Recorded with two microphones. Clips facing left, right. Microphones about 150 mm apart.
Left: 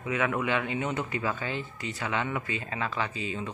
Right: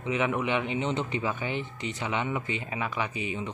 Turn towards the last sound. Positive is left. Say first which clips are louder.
# right 1 dB
turn(degrees=-20)  # may be behind; listen again after turning